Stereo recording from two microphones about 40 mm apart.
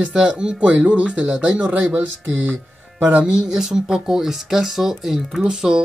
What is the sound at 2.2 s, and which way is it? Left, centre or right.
Speech, right.